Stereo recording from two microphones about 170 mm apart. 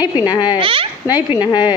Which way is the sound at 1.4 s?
25° left (ahead or behind).